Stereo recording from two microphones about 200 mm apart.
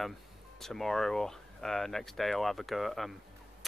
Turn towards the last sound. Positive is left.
turn(degrees=0)  # may be behind; listen again after turning